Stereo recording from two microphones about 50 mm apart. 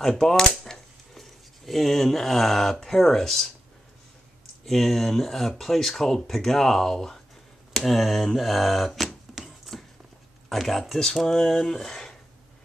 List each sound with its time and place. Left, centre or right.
0.0 s speech: centre
0.7 s a sound: centre
1.7 s speech: centre
4.6 s speech: centre
7.8 s a sound: centre
10.5 s speech: centre